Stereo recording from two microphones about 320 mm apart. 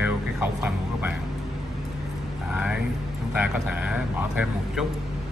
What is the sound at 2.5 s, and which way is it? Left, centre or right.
A man's voice, centre.